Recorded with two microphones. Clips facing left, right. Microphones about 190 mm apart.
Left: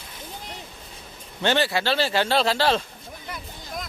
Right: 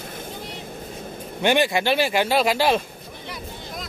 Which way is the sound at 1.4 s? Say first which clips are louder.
Right 3 dB; 15° right (ahead or behind).